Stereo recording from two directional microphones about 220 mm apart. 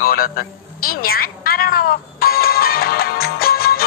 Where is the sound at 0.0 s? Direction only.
40° left (ahead or behind).